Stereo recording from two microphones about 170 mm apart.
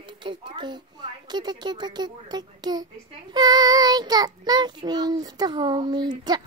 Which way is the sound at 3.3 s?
25° right (ahead or behind).